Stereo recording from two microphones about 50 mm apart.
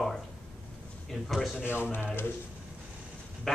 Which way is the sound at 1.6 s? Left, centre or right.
Left.